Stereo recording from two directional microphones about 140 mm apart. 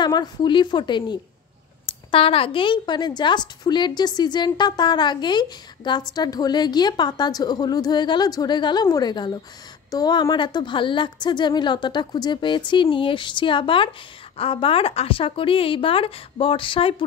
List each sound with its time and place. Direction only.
0.0 s a woman's voice: 30° left (ahead or behind)